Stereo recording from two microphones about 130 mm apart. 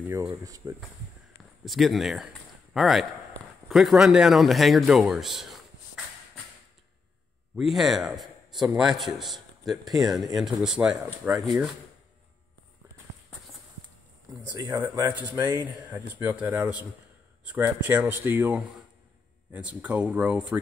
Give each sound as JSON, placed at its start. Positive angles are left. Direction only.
{"t": 0.0, "sound": "speech", "side_deg": -25}
{"t": 1.6, "sound": "a man's voice", "side_deg": 0}
{"t": 7.5, "sound": "a man's voice", "side_deg": 0}
{"t": 14.7, "sound": "speech", "side_deg": -15}